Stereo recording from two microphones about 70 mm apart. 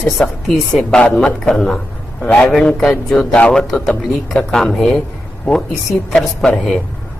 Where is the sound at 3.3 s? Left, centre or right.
Centre.